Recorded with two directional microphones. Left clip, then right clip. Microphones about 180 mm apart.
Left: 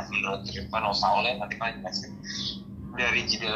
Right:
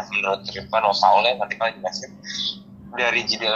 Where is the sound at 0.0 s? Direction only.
40° right (ahead or behind).